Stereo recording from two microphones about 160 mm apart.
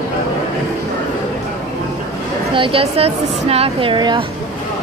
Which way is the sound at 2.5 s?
35° right (ahead or behind).